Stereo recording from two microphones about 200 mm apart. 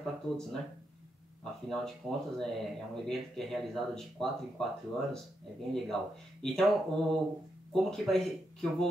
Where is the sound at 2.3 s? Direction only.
Centre (ahead or behind).